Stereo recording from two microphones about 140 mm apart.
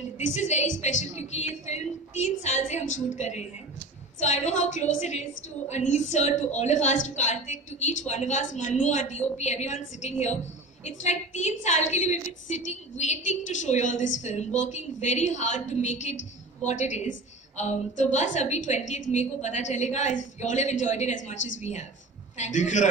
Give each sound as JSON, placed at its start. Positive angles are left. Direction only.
{"t": 0.2, "sound": "a woman's voice", "side_deg": 60}